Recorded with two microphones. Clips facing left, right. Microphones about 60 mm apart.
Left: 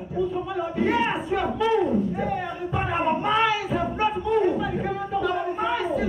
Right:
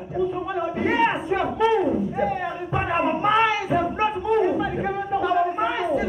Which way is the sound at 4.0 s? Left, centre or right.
Centre.